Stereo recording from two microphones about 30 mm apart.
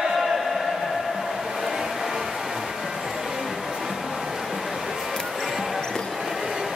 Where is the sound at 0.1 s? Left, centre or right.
Centre.